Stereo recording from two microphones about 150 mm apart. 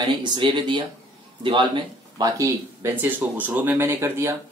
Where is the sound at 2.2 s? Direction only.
25° right (ahead or behind).